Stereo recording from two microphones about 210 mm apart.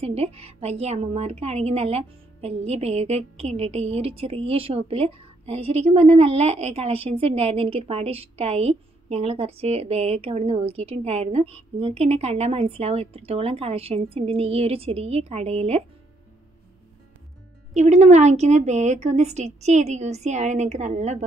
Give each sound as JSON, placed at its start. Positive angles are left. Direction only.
{"t": 0.0, "sound": "a woman's voice", "side_deg": -30}
{"t": 17.7, "sound": "a woman's voice", "side_deg": -30}